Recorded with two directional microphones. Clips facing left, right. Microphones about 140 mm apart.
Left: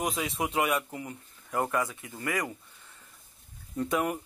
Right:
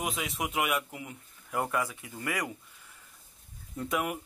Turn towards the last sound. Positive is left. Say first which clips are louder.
# left 3 dB
turn(degrees=-5)  # may be behind; listen again after turning